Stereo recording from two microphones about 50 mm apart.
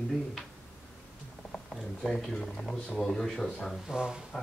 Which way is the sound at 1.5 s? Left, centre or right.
Centre.